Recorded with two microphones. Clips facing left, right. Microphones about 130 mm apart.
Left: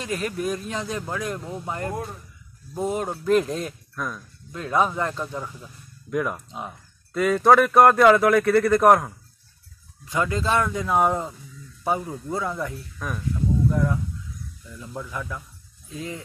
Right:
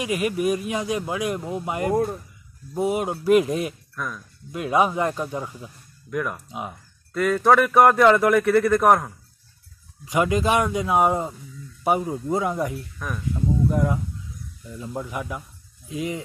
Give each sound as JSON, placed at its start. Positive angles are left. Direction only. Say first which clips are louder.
{"t": 0.0, "sound": "speech", "louder": "right 4 dB", "side_deg": -10}
{"t": 3.9, "sound": "speech", "louder": "left 1 dB", "side_deg": 10}
{"t": 4.5, "sound": "speech", "louder": "right 2 dB", "side_deg": -10}
{"t": 6.0, "sound": "speech", "louder": "left 2 dB", "side_deg": 10}
{"t": 10.0, "sound": "speech", "louder": "right 4 dB", "side_deg": -15}
{"t": 11.8, "sound": "speech", "louder": "right 4 dB", "side_deg": -20}